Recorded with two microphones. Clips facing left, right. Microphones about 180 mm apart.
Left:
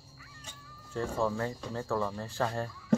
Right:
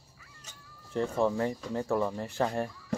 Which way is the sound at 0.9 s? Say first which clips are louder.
Right 3 dB; 20° right (ahead or behind).